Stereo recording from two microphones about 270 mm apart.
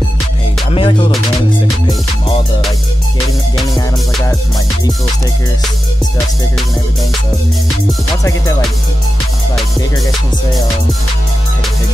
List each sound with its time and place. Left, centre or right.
0.7 s music: centre
8.2 s music: centre